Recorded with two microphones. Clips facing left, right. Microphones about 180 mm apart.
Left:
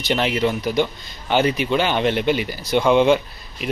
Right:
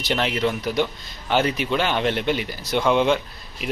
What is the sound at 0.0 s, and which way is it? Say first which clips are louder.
Speech: left 3 dB; centre (ahead or behind).